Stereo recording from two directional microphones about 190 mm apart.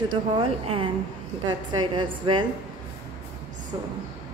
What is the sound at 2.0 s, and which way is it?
Speech, 25° right (ahead or behind).